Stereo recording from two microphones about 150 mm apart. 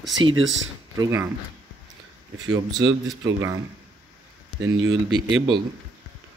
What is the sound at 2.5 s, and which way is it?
A man's voice, 25° right (ahead or behind).